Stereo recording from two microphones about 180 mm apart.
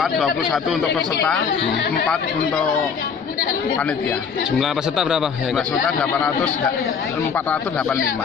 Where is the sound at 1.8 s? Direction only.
65° left (ahead or behind).